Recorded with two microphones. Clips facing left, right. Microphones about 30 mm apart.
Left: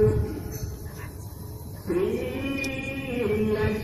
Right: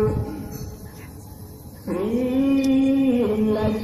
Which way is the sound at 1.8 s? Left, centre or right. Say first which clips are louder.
Even; centre.